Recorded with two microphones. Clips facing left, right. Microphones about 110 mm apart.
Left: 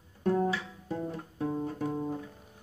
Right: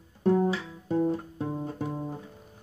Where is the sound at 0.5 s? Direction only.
30° right (ahead or behind).